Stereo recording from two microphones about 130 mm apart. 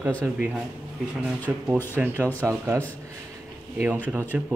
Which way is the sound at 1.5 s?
10° right (ahead or behind).